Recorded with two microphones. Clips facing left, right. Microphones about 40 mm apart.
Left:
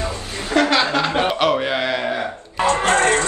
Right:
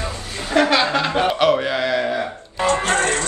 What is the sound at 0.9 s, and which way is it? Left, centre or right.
Chuckle, centre.